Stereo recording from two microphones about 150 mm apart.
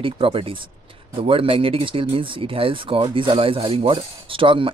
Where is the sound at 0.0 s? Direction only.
35° right (ahead or behind).